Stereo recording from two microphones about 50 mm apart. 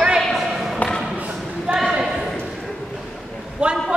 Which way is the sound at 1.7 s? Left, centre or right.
Centre.